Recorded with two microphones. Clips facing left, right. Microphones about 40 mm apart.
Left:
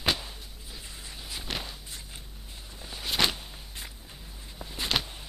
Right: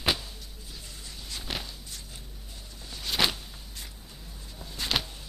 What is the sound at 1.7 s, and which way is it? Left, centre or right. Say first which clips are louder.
Walk: left 1 dB; left.